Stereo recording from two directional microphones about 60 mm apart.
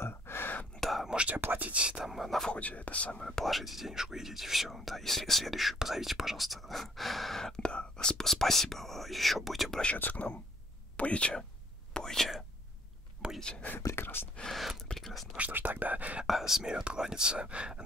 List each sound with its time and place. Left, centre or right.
0.0 s whispering: left
0.7 s whispering: centre
1.0 s whispering: centre
1.4 s speech: right
2.0 s speech: centre
2.5 s speech: left
3.3 s speech: centre
9.9 s speech: left
11.9 s whispering: centre
13.4 s speech: centre
13.7 s speech: left
15.0 s whispering: centre
15.3 s speech: right
16.3 s speech: centre